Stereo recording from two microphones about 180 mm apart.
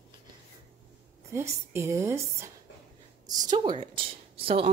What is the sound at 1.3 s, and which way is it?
A woman's voice, 15° right (ahead or behind).